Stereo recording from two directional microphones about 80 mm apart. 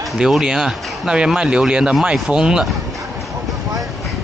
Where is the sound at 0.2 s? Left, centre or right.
Centre.